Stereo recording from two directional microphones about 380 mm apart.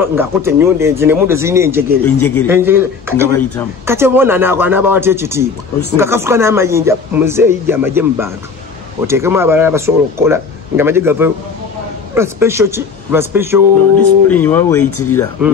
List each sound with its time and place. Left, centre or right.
0.1 s speech: centre
2.1 s speech: centre
2.4 s speech: centre
14.3 s speech: centre
14.8 s speech: left